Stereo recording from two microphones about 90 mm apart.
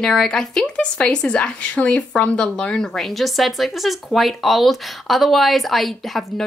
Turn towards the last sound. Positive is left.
turn(degrees=0)  # may be behind; listen again after turning